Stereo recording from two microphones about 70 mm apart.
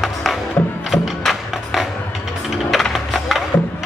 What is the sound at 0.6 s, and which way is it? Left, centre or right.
Music, left.